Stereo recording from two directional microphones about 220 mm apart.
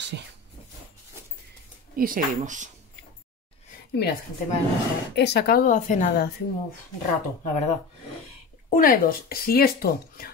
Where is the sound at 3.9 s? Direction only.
50° left (ahead or behind).